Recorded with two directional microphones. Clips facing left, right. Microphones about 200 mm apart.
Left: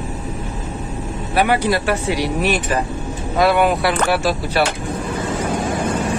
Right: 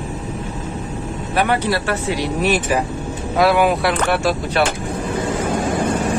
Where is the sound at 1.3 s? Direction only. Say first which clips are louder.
Left 2 dB; 10° left (ahead or behind).